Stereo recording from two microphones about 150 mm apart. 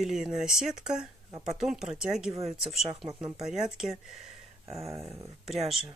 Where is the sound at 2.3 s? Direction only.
45° right (ahead or behind).